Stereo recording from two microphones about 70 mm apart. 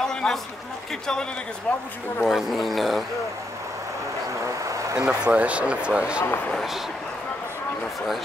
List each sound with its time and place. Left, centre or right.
0.1 s a sound: centre
1.7 s speech: centre
2.2 s speech: centre
4.6 s a sound: right
5.0 s speech: centre
6.5 s speech: centre